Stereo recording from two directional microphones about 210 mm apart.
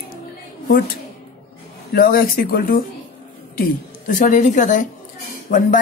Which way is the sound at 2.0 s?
45° left (ahead or behind).